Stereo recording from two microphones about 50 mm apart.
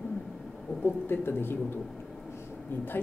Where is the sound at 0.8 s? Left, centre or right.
Left.